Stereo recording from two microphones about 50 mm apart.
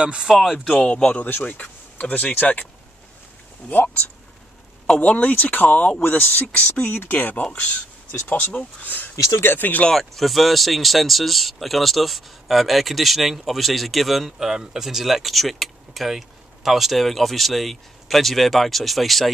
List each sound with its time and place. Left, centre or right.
0.0 s speech: centre
0.3 s speech: centre
0.7 s speech: left
3.6 s speech: left
9.9 s speech: centre